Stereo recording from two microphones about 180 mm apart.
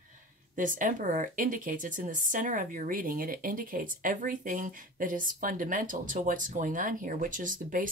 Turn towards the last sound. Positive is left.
turn(degrees=-45)  # may be behind; listen again after turning